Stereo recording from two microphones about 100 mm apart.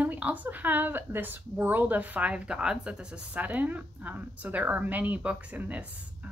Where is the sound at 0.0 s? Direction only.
15° right (ahead or behind).